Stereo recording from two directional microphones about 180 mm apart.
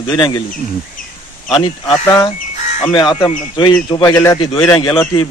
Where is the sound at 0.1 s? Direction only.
25° left (ahead or behind).